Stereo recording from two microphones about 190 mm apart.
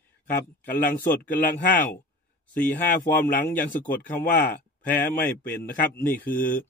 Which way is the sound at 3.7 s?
40° left (ahead or behind).